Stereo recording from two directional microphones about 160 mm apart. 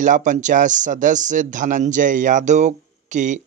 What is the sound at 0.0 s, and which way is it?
Speech, 50° right (ahead or behind).